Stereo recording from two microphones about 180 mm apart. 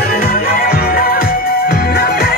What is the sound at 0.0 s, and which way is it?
Music, 60° left (ahead or behind).